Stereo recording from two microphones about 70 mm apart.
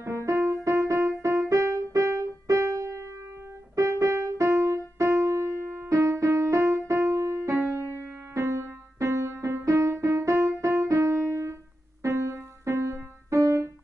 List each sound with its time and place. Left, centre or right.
0.0 s music: right